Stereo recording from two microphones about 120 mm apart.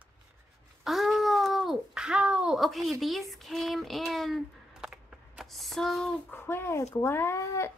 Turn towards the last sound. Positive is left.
turn(degrees=25)  # may be behind; listen again after turning